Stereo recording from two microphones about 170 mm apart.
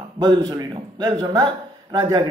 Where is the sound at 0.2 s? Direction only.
25° right (ahead or behind).